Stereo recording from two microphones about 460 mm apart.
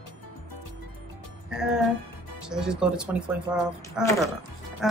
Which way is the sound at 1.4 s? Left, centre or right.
Centre.